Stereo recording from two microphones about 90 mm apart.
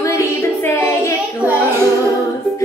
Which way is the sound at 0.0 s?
30° left (ahead or behind).